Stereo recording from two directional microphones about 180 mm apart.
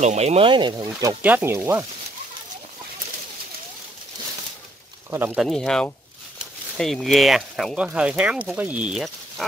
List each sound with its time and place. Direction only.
0.0 s speech: 40° right (ahead or behind)
0.8 s speech: 10° right (ahead or behind)
5.1 s speech: 10° right (ahead or behind)